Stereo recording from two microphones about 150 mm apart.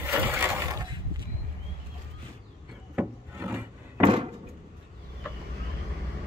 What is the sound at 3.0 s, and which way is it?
Wood, 15° right (ahead or behind).